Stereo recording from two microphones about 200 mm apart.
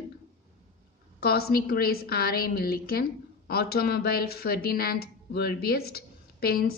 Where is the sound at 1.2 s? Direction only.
50° left (ahead or behind).